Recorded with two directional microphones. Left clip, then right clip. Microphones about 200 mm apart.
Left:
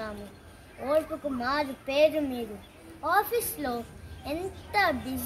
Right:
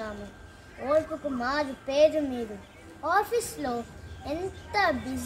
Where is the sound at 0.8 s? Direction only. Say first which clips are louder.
Right 1 dB; 5° right (ahead or behind).